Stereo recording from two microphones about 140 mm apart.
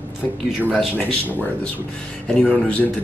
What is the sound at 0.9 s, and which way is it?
Speech, 10° left (ahead or behind).